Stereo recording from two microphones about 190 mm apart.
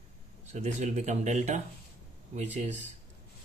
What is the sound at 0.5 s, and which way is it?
Speech, 35° right (ahead or behind).